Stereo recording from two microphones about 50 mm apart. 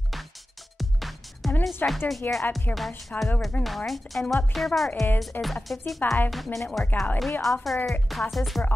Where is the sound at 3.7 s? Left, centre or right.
Centre.